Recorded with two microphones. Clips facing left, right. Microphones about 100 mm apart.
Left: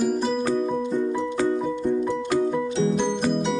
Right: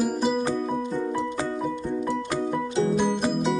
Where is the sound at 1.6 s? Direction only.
Centre (ahead or behind).